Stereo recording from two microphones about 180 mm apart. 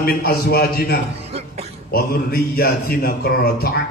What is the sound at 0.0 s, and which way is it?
Speech, 55° left (ahead or behind).